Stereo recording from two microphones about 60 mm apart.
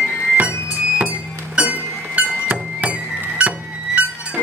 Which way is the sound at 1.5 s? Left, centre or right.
Right.